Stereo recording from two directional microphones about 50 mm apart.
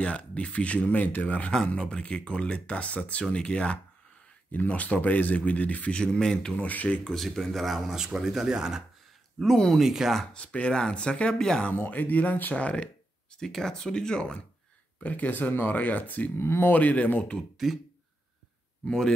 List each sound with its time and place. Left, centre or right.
0.0 s speech: left
4.5 s speech: left
5.9 s speech: centre
6.7 s speech: left
7.1 s speech: centre
7.9 s speech: centre
9.4 s speech: centre
9.8 s speech: centre
10.3 s speech: left
11.7 s speech: left
13.4 s speech: centre
15.0 s speech: left
16.3 s speech: left
18.9 s speech: centre